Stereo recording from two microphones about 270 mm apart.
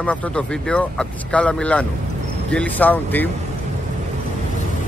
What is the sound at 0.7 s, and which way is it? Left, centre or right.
Speech, centre.